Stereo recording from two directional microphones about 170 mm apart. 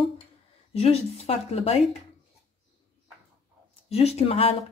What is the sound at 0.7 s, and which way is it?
A woman's voice, 35° left (ahead or behind).